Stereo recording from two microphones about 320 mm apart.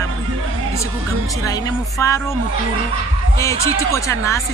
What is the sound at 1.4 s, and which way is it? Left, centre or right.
Speech, centre.